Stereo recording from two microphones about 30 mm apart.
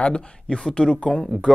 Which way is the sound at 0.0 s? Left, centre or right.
Left.